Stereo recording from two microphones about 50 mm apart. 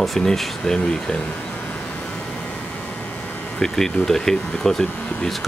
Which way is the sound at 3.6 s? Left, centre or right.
Centre.